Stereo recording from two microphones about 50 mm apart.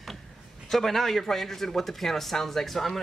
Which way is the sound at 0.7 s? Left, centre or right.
Centre.